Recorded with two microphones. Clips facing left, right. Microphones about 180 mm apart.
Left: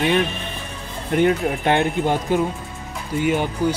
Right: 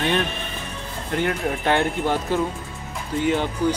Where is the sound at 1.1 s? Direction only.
20° left (ahead or behind).